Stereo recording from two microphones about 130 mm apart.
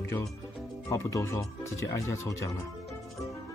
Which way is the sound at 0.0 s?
20° left (ahead or behind).